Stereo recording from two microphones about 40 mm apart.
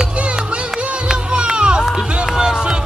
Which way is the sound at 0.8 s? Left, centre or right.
Right.